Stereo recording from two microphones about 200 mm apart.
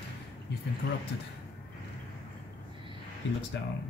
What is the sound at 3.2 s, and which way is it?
Speech, 65° left (ahead or behind).